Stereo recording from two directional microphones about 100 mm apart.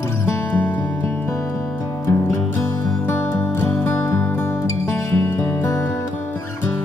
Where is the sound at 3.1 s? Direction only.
20° left (ahead or behind).